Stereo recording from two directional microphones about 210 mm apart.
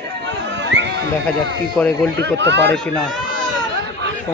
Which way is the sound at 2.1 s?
55° right (ahead or behind).